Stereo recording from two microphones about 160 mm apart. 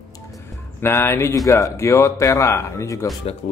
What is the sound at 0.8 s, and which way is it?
Speech, 15° left (ahead or behind).